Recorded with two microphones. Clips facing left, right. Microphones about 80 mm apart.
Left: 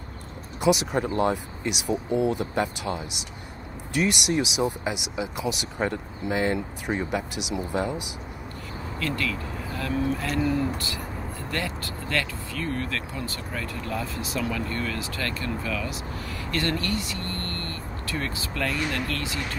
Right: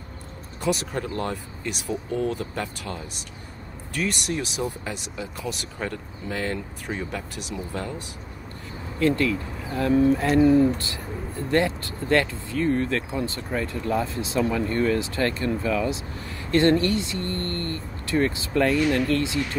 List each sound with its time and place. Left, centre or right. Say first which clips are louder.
0.6 s speech: left 4 dB; centre
9.0 s speech: right 8 dB; right